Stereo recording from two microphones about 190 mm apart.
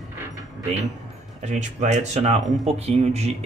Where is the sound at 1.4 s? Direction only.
40° right (ahead or behind).